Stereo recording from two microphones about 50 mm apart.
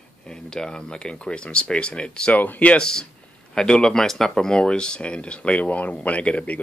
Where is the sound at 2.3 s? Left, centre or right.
Left.